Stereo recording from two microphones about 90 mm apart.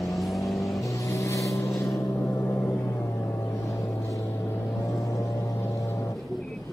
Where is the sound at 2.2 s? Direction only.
25° left (ahead or behind).